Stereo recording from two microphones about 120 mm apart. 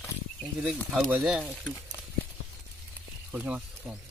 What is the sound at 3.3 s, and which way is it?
Speech, 15° right (ahead or behind).